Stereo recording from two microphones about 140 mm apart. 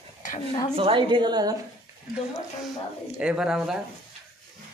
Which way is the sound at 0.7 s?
35° right (ahead or behind).